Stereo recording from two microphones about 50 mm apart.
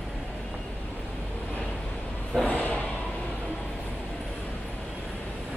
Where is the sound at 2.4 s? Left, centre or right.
Left.